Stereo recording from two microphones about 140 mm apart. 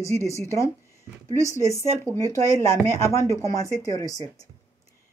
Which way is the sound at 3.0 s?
20° left (ahead or behind).